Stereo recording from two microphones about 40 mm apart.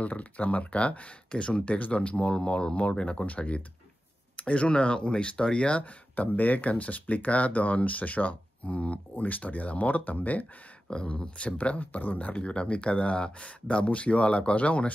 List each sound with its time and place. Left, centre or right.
0.0 s speech: left
6.1 s speech: left
10.9 s speech: left
12.4 s speech: left